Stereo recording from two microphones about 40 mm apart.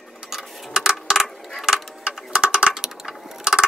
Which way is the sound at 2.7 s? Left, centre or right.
Centre.